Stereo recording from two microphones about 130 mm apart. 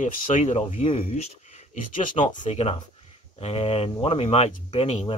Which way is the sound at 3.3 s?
50° left (ahead or behind).